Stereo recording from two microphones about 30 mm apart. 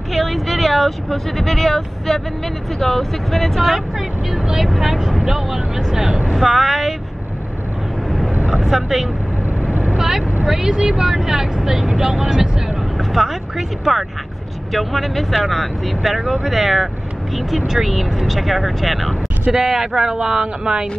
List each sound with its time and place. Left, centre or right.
0.1 s vehicle: centre
2.8 s speech: centre
4.6 s speech: centre
8.6 s speech: centre
13.1 s speech: centre
19.5 s speech: centre